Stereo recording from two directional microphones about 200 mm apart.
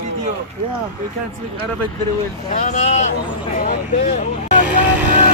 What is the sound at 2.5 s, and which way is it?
Speech, 35° left (ahead or behind).